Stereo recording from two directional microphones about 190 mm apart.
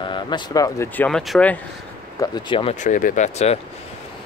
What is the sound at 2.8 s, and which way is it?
Speech, 45° left (ahead or behind).